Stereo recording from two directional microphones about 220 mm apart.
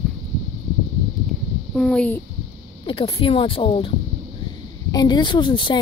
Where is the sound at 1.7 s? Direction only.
Centre (ahead or behind).